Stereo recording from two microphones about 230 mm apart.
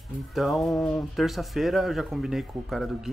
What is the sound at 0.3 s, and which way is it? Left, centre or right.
Speech, centre.